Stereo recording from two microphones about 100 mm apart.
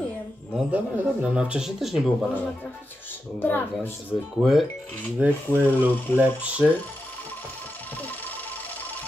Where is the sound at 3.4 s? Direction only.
20° left (ahead or behind).